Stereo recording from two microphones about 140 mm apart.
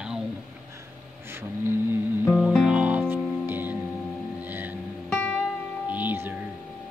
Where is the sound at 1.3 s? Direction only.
15° right (ahead or behind).